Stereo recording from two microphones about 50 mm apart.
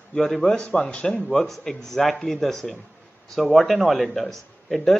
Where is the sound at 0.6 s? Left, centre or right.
Left.